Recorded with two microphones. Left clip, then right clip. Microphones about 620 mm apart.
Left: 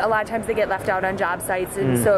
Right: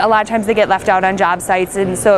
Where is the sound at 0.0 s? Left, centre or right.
Right.